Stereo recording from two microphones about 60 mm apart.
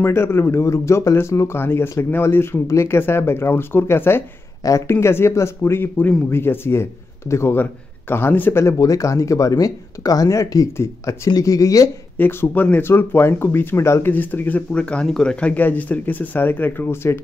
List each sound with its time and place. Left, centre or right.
0.0 s speech: left
1.6 s speech: left
4.6 s speech: left
5.0 s speech: left
8.1 s speech: left
8.7 s speech: left
12.2 s speech: left
14.1 s speech: left
14.8 s speech: centre; by 17.2 s left